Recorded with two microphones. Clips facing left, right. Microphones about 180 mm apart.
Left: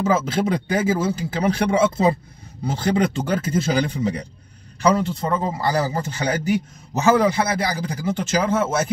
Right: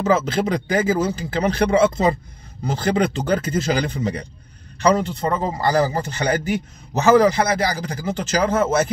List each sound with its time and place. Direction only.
0.0 s a man's voice: 5° left (ahead or behind)